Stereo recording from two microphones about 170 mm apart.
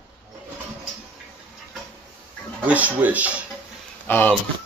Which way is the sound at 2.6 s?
10° right (ahead or behind).